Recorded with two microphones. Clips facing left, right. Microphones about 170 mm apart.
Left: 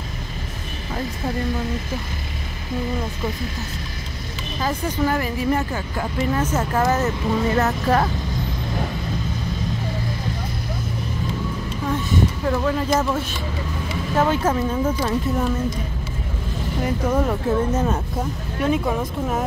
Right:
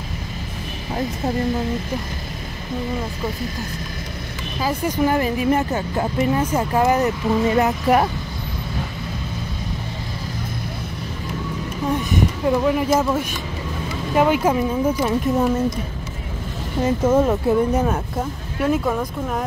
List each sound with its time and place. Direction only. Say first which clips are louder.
4.6 s speech: right 2 dB; 10° right (ahead or behind)
6.4 s speech: right 2 dB; 10° right (ahead or behind)
11.9 s speech: right 1 dB; 15° right (ahead or behind)
16.8 s speech: right 5 dB; 20° right (ahead or behind)
18.7 s speech: right 1 dB; 5° left (ahead or behind)